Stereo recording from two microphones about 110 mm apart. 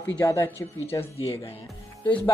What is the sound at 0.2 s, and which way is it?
Speech, 20° left (ahead or behind).